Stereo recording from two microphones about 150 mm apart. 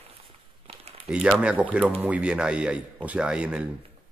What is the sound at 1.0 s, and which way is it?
Speech, 5° right (ahead or behind).